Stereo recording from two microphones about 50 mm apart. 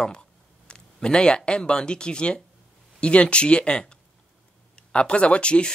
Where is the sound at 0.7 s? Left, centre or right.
Centre.